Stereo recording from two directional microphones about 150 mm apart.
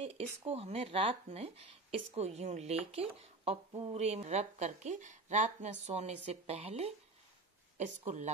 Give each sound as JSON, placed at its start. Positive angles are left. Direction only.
{"t": 0.5, "sound": "speech", "side_deg": -40}